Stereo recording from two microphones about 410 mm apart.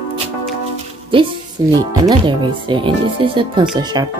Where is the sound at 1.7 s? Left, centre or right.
Centre.